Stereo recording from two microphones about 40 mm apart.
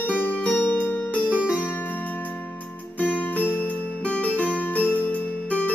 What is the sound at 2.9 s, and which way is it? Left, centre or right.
Music, left.